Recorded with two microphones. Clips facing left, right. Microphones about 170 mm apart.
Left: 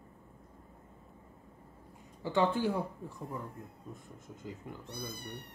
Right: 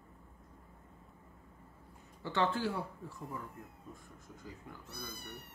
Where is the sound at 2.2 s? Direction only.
15° left (ahead or behind).